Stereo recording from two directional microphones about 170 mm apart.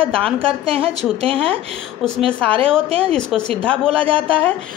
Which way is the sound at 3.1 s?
5° left (ahead or behind).